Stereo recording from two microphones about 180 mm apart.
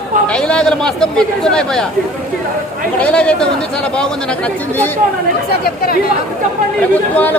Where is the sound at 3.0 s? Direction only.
5° left (ahead or behind).